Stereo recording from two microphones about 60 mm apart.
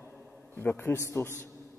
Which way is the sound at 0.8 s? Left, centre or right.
Left.